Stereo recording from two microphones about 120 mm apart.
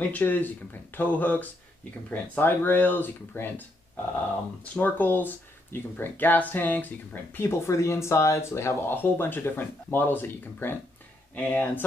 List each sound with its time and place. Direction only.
0.1 s speech: 15° left (ahead or behind)
4.7 s speech: 15° left (ahead or behind)